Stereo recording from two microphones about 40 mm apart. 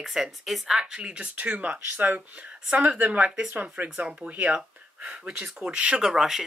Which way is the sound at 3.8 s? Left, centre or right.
Right.